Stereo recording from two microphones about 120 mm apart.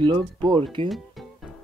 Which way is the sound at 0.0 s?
40° right (ahead or behind).